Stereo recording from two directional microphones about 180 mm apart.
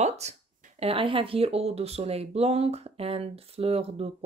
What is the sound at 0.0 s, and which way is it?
Speech, 40° right (ahead or behind).